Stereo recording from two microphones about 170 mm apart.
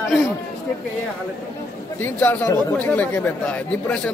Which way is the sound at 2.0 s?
10° left (ahead or behind).